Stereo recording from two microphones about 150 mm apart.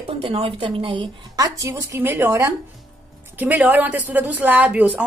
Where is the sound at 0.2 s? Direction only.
35° right (ahead or behind).